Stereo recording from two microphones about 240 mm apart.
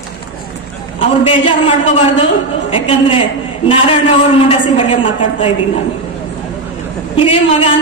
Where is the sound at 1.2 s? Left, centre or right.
Left.